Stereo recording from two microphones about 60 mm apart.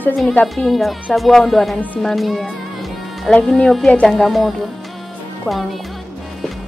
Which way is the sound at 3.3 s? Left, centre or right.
Centre.